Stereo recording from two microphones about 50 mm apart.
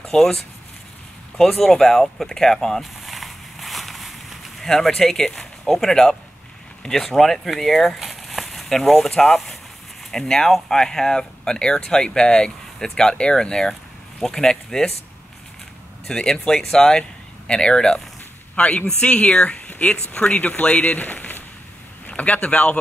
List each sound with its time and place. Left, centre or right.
0.0 s speech: centre
1.4 s speech: centre
2.8 s a sound: centre
6.8 s speech: centre
16.1 s speech: centre
18.6 s speech: left